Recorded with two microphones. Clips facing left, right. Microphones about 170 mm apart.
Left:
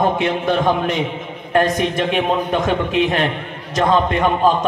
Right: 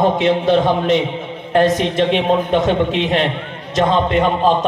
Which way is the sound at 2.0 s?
20° right (ahead or behind).